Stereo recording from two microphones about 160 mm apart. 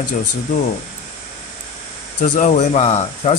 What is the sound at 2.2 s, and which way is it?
Speech, 50° left (ahead or behind).